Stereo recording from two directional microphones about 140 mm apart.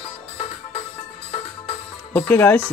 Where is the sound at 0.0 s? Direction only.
45° left (ahead or behind).